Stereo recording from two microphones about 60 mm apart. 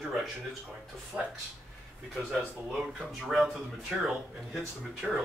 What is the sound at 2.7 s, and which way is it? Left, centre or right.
Speech, centre.